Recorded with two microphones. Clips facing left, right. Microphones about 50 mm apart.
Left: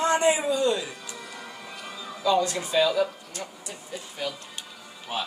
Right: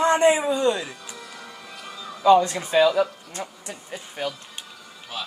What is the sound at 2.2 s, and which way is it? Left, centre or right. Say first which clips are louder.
Speech: right 7 dB; right.